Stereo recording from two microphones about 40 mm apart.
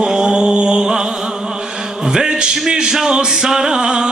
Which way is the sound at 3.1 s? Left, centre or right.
Centre.